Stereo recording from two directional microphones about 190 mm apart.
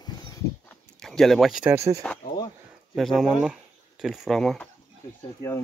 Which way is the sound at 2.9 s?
Centre (ahead or behind).